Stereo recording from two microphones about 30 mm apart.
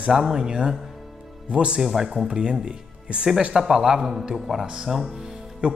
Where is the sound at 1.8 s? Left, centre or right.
Centre.